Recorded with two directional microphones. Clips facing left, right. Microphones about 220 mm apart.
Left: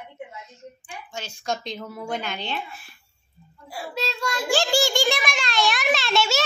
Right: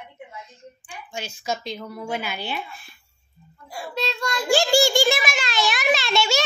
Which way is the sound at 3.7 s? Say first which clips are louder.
Right 1 dB; 5° left (ahead or behind).